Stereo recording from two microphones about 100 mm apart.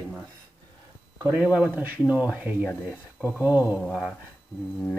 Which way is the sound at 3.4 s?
15° right (ahead or behind).